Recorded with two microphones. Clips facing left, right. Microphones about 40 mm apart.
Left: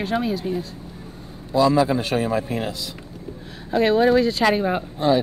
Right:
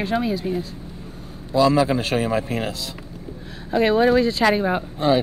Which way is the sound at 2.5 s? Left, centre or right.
Right.